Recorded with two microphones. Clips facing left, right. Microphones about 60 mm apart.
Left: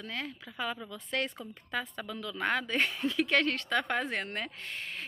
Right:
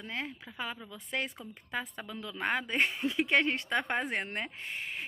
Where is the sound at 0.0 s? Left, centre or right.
Centre.